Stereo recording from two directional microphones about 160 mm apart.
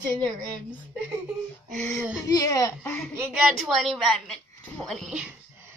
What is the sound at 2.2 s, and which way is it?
Speech, 25° left (ahead or behind).